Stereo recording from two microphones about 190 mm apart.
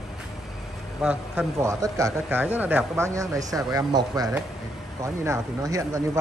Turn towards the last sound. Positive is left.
turn(degrees=-15)  # may be behind; listen again after turning